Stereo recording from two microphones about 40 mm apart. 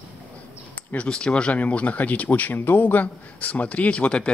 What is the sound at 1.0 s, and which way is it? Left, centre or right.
Speech, left.